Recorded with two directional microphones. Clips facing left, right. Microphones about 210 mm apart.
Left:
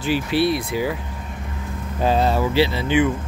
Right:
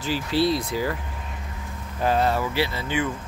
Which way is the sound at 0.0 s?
65° left (ahead or behind).